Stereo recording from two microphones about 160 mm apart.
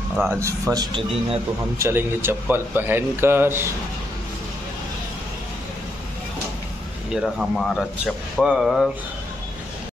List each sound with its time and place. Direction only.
0.3 s speech: 15° right (ahead or behind)
7.1 s speech: 5° right (ahead or behind)